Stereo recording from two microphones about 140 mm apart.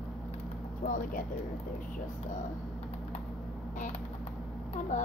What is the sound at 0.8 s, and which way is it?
Speech, 70° left (ahead or behind).